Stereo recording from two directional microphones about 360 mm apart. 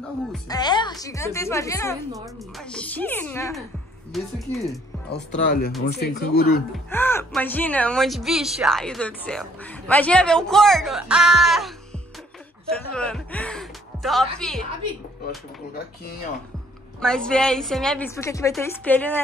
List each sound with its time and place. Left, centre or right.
0.3 s a woman's voice: centre
5.1 s speech: left
6.9 s speech: centre
17.0 s speech: centre